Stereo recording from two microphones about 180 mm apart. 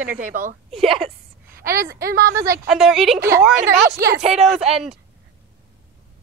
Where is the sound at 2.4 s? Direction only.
15° right (ahead or behind).